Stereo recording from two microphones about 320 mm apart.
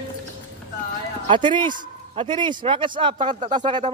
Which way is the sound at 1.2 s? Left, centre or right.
Centre.